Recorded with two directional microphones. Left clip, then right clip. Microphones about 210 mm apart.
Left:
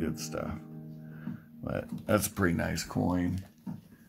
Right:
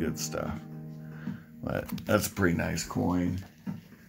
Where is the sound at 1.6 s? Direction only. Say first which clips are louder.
Right 2 dB; 5° left (ahead or behind); by 3.3 s 35° left (ahead or behind).